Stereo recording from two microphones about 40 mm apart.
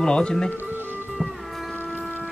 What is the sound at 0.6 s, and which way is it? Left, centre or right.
Music, right.